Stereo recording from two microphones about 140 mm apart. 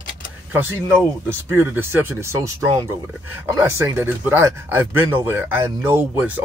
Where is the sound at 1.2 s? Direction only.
15° right (ahead or behind).